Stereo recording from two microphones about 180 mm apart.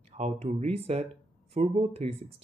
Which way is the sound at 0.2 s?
40° right (ahead or behind).